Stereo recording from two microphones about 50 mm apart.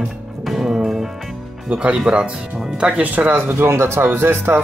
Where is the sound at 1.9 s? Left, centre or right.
Centre.